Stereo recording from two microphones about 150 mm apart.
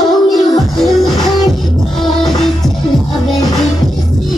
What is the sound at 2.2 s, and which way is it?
Music, centre (ahead or behind).